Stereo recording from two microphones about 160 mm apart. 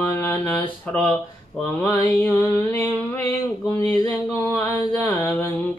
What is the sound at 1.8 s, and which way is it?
Mantra, 10° left (ahead or behind).